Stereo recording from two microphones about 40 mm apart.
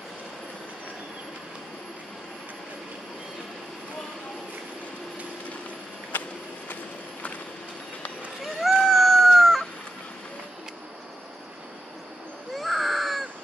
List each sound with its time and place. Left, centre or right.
6.1 s a sound: left
8.7 s chicken: centre
12.5 s baby cry: centre